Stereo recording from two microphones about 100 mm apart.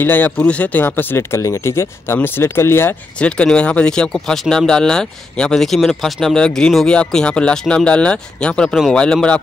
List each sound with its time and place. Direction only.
0.0 s speech: 20° left (ahead or behind)
3.2 s speech: 10° left (ahead or behind)